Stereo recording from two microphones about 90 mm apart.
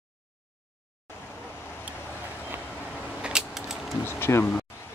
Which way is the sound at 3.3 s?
5° right (ahead or behind).